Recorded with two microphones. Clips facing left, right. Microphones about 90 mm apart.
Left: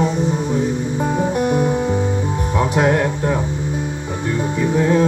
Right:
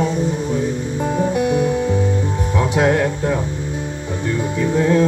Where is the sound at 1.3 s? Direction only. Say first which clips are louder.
Even; 45° left (ahead or behind).